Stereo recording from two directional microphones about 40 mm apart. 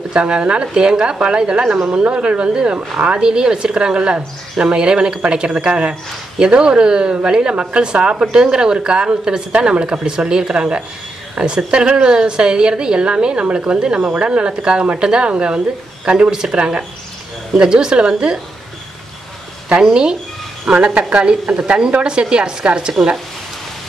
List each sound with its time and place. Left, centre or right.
0.1 s a woman's voice: right
19.7 s a woman's voice: right